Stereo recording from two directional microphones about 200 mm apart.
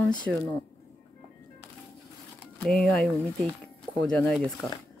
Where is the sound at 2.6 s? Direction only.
5° left (ahead or behind).